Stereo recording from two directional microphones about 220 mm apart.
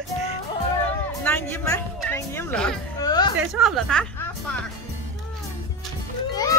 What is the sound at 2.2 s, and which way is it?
Music, 10° left (ahead or behind).